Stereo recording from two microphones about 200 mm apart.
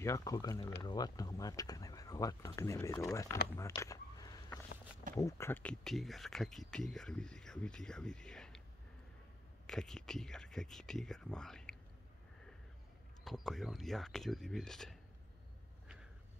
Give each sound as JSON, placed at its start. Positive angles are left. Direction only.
{"t": 0.0, "sound": "speech", "side_deg": 15}
{"t": 3.5, "sound": "a sound", "side_deg": 15}
{"t": 5.1, "sound": "speech", "side_deg": 15}
{"t": 9.7, "sound": "speech", "side_deg": 0}
{"t": 13.2, "sound": "speech", "side_deg": 0}